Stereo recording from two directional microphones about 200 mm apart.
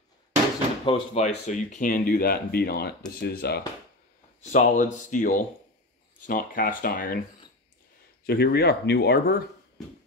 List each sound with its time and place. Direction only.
0.8 s speech: 30° left (ahead or behind); by 3.6 s 55° left (ahead or behind)
4.4 s speech: 40° left (ahead or behind)
8.3 s speech: 55° left (ahead or behind)